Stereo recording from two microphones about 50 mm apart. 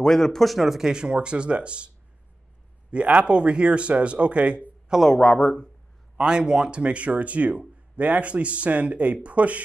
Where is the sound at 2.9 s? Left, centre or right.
Right.